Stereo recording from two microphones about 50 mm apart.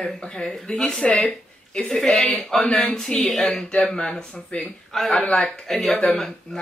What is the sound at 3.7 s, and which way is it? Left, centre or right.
Speech, left.